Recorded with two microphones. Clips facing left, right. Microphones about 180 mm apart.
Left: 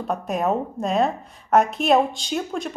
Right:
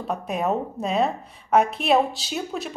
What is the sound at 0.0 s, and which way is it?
A woman's voice, centre (ahead or behind).